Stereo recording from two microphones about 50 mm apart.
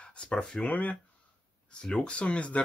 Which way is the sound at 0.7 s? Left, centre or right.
Left.